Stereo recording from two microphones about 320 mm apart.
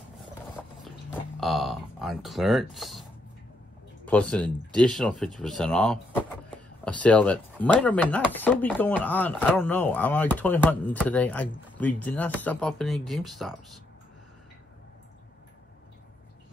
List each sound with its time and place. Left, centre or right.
1.4 s speech: centre